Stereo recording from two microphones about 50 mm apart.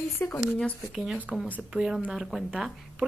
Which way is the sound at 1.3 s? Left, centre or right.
Right.